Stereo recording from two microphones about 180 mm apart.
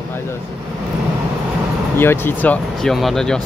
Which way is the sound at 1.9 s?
10° left (ahead or behind).